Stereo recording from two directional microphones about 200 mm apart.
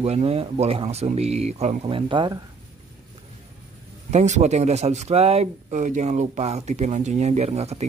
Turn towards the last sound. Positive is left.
turn(degrees=-30)  # may be behind; listen again after turning